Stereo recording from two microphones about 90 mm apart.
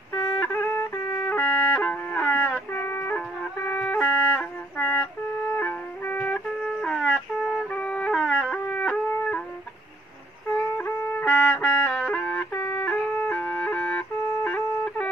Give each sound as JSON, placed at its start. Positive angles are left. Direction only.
{"t": 0.1, "sound": "music", "side_deg": 25}
{"t": 5.6, "sound": "music", "side_deg": 20}
{"t": 10.8, "sound": "music", "side_deg": 25}
{"t": 11.9, "sound": "music", "side_deg": -5}
{"t": 12.2, "sound": "music", "side_deg": 15}